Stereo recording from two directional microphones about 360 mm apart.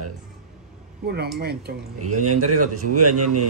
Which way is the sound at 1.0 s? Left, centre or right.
Right.